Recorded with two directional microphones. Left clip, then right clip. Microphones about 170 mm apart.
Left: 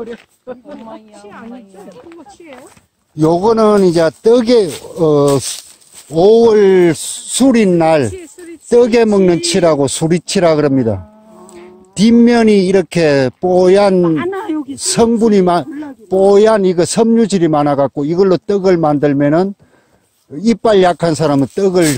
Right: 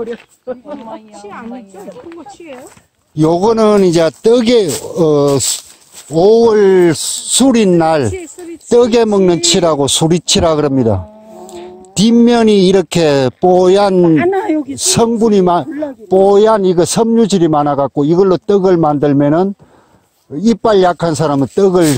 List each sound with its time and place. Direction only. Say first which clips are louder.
0.0 s speech: right 5 dB; 45° left (ahead or behind)
3.2 s speech: even; 25° right (ahead or behind)
6.0 s a man's voice: even; 5° left (ahead or behind); by 14.0 s 15° right (ahead or behind)
14.1 s a sound: right 6 dB; 40° left (ahead or behind)
14.8 s a man's voice: left 1 dB; 10° right (ahead or behind)